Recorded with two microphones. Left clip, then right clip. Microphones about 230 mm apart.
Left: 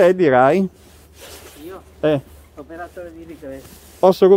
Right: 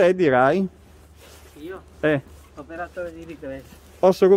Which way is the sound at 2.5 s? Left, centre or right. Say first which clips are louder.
Right 1 dB; right.